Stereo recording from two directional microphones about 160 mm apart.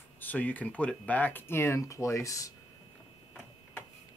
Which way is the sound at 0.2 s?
10° left (ahead or behind).